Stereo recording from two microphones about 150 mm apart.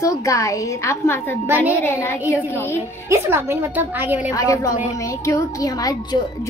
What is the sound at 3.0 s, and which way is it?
A woman's voice, 15° right (ahead or behind).